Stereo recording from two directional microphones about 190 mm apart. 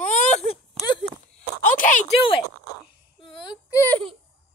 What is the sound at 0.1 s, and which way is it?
Baby cry, 40° left (ahead or behind).